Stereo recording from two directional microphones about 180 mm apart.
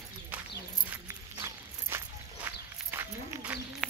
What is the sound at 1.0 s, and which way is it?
Walk, 15° right (ahead or behind).